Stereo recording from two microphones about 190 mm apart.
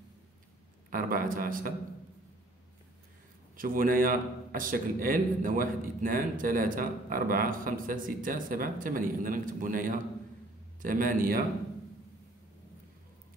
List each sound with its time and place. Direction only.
0.8 s a man's voice: 50° right (ahead or behind)
3.5 s a man's voice: 45° right (ahead or behind)